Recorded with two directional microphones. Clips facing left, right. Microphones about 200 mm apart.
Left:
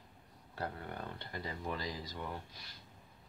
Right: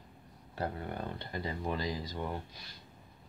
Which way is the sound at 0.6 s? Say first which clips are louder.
Right 5 dB; 25° right (ahead or behind).